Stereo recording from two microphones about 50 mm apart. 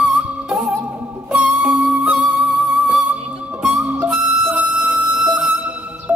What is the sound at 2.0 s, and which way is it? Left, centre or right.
Music, centre.